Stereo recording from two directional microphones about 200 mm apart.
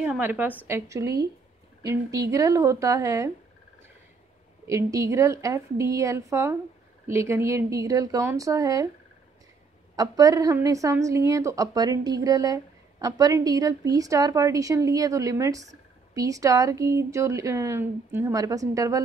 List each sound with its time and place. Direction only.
0.0 s a woman's voice: 5° right (ahead or behind)
4.6 s a woman's voice: 15° right (ahead or behind)
9.9 s a woman's voice: 20° right (ahead or behind)